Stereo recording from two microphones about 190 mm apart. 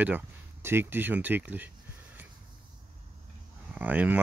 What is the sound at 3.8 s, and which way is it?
Speech, 10° right (ahead or behind).